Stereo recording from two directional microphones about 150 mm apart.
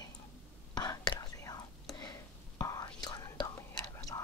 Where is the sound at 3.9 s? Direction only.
25° left (ahead or behind).